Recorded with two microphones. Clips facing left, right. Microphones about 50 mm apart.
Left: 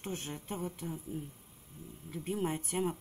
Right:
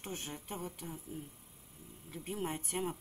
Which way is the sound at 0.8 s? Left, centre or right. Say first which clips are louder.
Left 5 dB; centre.